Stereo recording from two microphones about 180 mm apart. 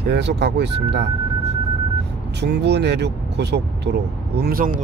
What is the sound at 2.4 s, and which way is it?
Speech, 70° right (ahead or behind).